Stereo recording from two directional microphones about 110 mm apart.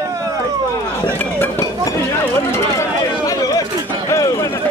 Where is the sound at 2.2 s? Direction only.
25° left (ahead or behind).